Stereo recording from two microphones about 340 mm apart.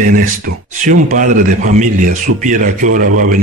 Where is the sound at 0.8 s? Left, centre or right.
Right.